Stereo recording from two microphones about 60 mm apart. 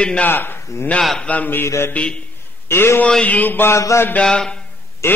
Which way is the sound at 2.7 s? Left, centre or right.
Left.